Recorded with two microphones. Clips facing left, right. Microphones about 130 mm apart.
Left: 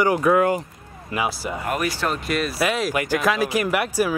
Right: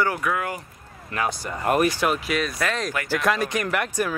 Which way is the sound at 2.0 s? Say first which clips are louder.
Even; 5° right (ahead or behind).